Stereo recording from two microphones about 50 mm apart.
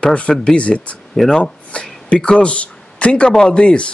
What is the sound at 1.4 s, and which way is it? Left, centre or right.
Speech, left.